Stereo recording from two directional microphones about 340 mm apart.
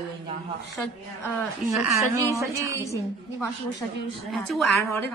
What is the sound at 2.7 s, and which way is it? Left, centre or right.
A woman's voice, centre.